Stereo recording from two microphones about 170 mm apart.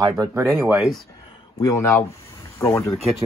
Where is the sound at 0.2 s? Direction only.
15° right (ahead or behind).